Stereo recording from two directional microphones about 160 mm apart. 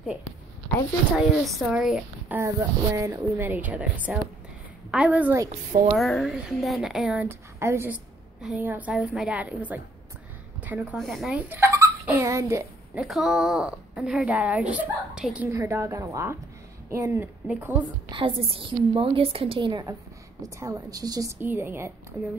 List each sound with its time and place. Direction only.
1.1 s a woman's voice: centre (ahead or behind)
2.3 s a woman's voice: 15° right (ahead or behind)
11.0 s speech: centre (ahead or behind); by 12.6 s 20° right (ahead or behind)
12.9 s a woman's voice: centre (ahead or behind)
15.5 s speech: 15° right (ahead or behind)
18.1 s a woman's voice: 35° right (ahead or behind); by 21.9 s 15° right (ahead or behind)